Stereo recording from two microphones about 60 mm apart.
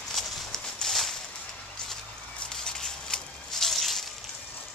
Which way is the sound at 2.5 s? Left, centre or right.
Centre.